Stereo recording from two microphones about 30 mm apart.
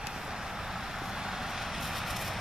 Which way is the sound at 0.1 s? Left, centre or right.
Centre.